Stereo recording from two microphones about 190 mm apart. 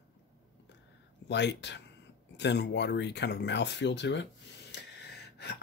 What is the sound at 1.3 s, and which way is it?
Speech, 65° left (ahead or behind).